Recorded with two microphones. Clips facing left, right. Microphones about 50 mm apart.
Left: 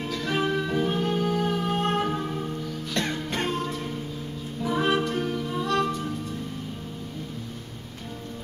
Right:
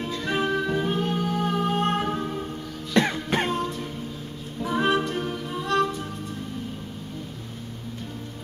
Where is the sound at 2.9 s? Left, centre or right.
Right.